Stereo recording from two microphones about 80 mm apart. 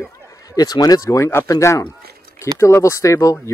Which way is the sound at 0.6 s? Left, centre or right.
Left.